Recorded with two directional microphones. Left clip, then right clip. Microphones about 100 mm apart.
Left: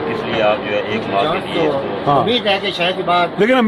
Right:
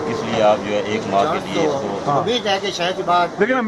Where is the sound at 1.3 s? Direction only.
30° left (ahead or behind).